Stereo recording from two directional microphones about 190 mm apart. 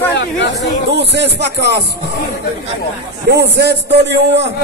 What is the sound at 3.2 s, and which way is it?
A man's voice, 60° right (ahead or behind).